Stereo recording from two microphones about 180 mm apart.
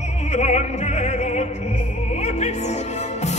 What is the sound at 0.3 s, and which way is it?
Opera, 40° left (ahead or behind).